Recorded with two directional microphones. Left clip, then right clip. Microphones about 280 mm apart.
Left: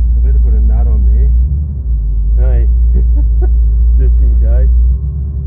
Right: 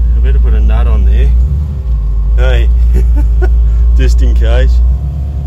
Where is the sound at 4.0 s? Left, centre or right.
Right.